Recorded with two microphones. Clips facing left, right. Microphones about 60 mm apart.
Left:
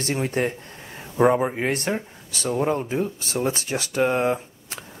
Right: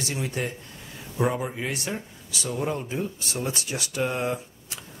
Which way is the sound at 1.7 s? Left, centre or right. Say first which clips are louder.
Left 6 dB; left.